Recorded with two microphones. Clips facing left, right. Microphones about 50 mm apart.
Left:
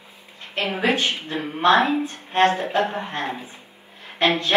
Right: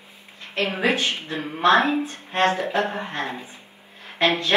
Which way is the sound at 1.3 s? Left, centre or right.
Left.